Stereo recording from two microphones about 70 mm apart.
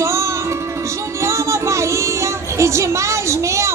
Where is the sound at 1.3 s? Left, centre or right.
Right.